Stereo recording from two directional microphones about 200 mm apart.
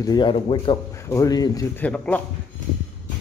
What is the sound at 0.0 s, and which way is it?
Speech, 20° left (ahead or behind).